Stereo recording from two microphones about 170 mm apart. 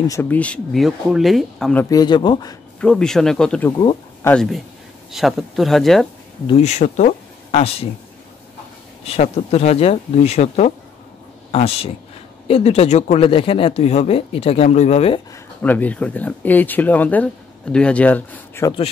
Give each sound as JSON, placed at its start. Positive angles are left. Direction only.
{"t": 0.0, "sound": "speech", "side_deg": 15}
{"t": 1.9, "sound": "speech", "side_deg": 25}
{"t": 2.8, "sound": "speech", "side_deg": 5}
{"t": 3.7, "sound": "speech", "side_deg": 20}
{"t": 4.3, "sound": "speech", "side_deg": 0}
{"t": 6.4, "sound": "speech", "side_deg": 40}
{"t": 9.0, "sound": "speech", "side_deg": 40}
{"t": 15.3, "sound": "speech", "side_deg": 10}